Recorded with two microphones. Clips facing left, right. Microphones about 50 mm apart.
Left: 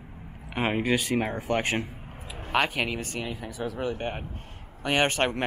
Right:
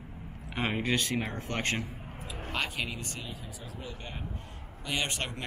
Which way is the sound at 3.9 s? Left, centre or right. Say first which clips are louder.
Left 8 dB; left.